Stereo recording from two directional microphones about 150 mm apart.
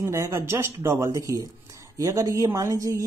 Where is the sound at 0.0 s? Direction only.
20° right (ahead or behind).